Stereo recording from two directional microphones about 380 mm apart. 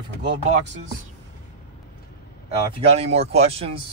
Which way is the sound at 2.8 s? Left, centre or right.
Centre.